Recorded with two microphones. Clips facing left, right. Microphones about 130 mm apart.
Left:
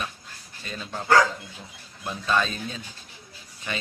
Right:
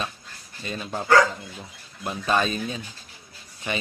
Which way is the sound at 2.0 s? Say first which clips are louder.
Right 2 dB; 20° right (ahead or behind).